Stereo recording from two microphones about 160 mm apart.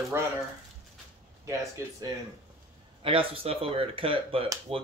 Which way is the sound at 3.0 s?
35° right (ahead or behind).